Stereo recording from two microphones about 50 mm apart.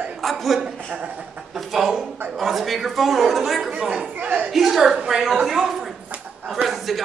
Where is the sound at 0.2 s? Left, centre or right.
Centre.